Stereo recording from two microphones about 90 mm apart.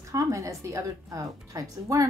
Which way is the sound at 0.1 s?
35° right (ahead or behind).